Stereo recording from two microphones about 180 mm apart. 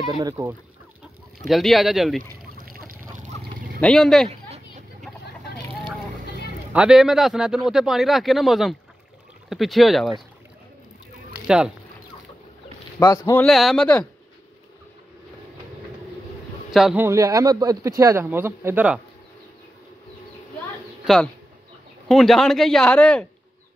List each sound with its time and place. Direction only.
0.2 s speech: 20° right (ahead or behind)
1.5 s a man's voice: centre (ahead or behind)
2.5 s a sound: 50° right (ahead or behind)
3.8 s a man's voice: 5° left (ahead or behind)
4.3 s a sound: 35° right (ahead or behind)
6.7 s a man's voice: 5° right (ahead or behind)
11.4 s speech: 5° right (ahead or behind)
13.0 s speech: 15° left (ahead or behind)
13.5 s a man's voice: centre (ahead or behind)
16.7 s a man's voice: centre (ahead or behind)
17.0 s speech: 15° right (ahead or behind)
21.0 s a sound: centre (ahead or behind)
22.0 s a man's voice: centre (ahead or behind)